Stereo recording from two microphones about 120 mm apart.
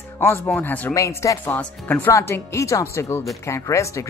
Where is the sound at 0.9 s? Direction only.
25° left (ahead or behind).